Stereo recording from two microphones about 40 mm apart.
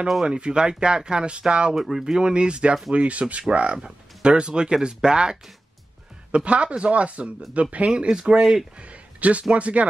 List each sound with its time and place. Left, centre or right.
0.2 s speech: right
1.8 s a man's voice: centre; by 8.1 s right
8.1 s speech: centre
8.7 s a man's voice: right